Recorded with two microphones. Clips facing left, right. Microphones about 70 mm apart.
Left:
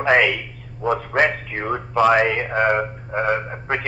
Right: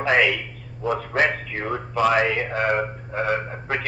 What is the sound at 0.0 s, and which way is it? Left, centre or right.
Speech, left.